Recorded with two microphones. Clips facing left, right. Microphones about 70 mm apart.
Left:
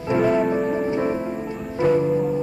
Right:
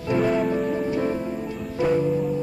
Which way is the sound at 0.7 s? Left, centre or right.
Left.